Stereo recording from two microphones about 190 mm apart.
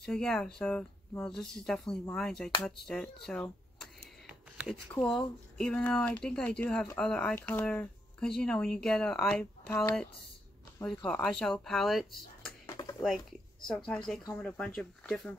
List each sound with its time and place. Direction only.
0.0 s speech: 5° left (ahead or behind)
3.8 s a sound: 5° right (ahead or behind)
4.9 s speech: 5° left (ahead or behind)
11.1 s speech: 5° left (ahead or behind)
12.6 s a sound: 20° left (ahead or behind)
13.7 s speech: 5° left (ahead or behind)